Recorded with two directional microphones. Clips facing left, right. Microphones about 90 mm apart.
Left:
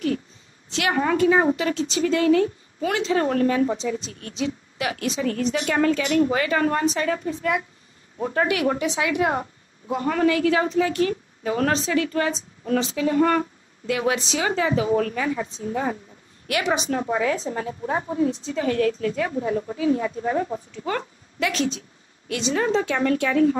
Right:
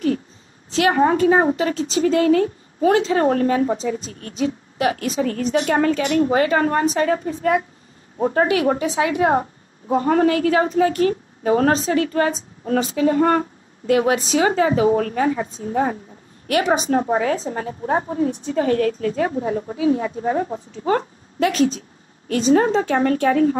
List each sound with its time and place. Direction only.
0.7 s a woman's voice: 35° right (ahead or behind)